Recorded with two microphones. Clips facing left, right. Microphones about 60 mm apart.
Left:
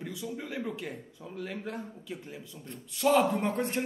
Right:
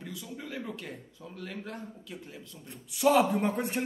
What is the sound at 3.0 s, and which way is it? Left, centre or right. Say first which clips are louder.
Speech: right 1 dB; centre.